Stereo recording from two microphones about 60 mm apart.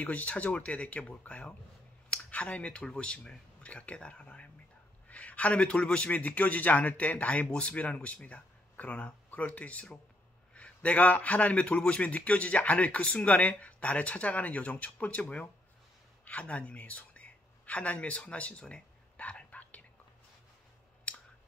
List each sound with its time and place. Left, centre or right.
0.0 s a man's voice: left
16.3 s a sound: left
21.1 s clicking: centre